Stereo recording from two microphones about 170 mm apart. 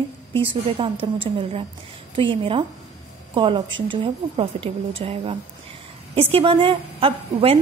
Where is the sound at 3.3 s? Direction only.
30° right (ahead or behind).